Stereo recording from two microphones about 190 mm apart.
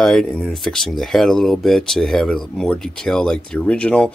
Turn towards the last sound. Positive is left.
turn(degrees=5)  # may be behind; listen again after turning